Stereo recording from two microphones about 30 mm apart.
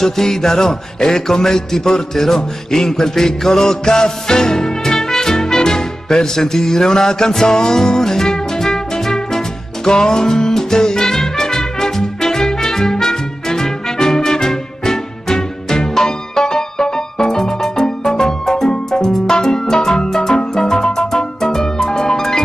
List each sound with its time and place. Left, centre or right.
0.0 s music: centre